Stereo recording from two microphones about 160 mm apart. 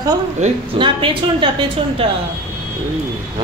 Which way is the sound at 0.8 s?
30° right (ahead or behind).